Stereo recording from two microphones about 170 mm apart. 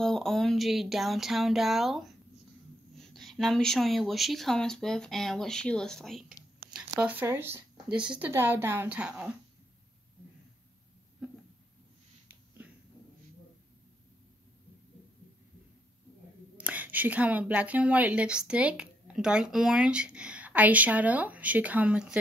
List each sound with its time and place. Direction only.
0.0 s speech: centre (ahead or behind)
7.0 s a woman's voice: 10° right (ahead or behind)
12.6 s a sound: 10° right (ahead or behind)
16.5 s a woman's voice: 10° right (ahead or behind)